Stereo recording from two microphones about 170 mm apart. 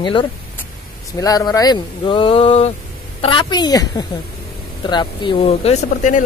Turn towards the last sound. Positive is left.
turn(degrees=40)  # may be behind; listen again after turning